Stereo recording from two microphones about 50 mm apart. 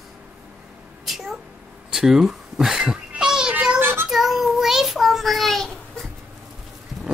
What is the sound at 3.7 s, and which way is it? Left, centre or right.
Child singing, right.